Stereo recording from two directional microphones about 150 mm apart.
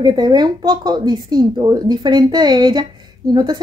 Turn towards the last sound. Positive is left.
turn(degrees=-30)  # may be behind; listen again after turning